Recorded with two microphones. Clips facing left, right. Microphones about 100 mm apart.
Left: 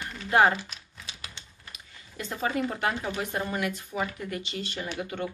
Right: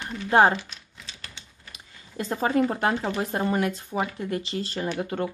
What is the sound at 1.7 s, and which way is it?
Speech, 35° right (ahead or behind).